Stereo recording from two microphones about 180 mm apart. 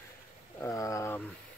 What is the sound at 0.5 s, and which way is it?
Speech, 15° left (ahead or behind).